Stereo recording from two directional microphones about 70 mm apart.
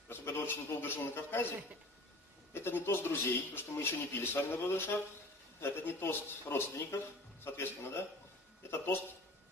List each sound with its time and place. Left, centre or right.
0.5 s a man's voice: left
2.5 s a man's voice: left